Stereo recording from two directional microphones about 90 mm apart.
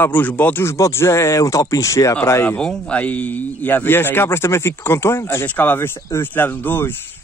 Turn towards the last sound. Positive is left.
turn(degrees=25)  # may be behind; listen again after turning